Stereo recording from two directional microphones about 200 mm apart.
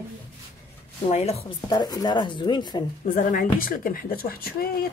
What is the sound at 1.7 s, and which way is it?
Speech, 20° left (ahead or behind).